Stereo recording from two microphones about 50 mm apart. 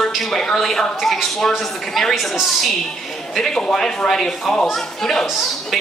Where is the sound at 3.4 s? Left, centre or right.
Centre.